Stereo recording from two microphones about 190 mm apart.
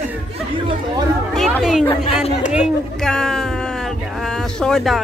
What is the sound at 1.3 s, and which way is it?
Chatter, centre (ahead or behind).